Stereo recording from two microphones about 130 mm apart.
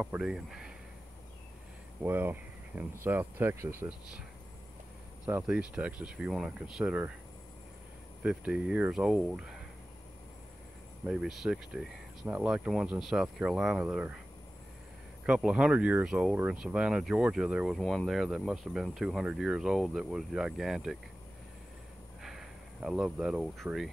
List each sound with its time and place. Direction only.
0.0 s speech: 10° right (ahead or behind)
2.0 s speech: 15° right (ahead or behind)
5.2 s speech: 10° right (ahead or behind)
8.2 s speech: 10° right (ahead or behind)
11.1 s speech: 5° right (ahead or behind)
15.2 s speech: 10° right (ahead or behind)
22.2 s speech: 5° right (ahead or behind)